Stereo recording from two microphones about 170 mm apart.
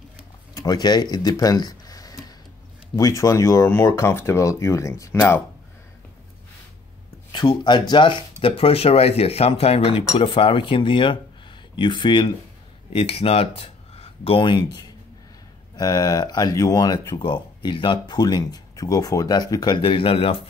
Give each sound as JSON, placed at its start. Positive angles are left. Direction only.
{"t": 0.6, "sound": "speech", "side_deg": 25}
{"t": 7.3, "sound": "speech", "side_deg": 25}
{"t": 15.7, "sound": "speech", "side_deg": 20}